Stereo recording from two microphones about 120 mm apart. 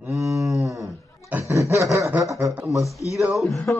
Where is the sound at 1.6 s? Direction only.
25° right (ahead or behind).